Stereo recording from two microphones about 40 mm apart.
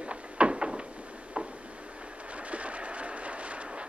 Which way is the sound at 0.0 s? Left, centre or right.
Right.